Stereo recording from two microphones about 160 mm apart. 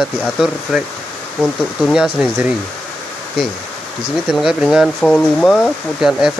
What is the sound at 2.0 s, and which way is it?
Speech, 10° right (ahead or behind).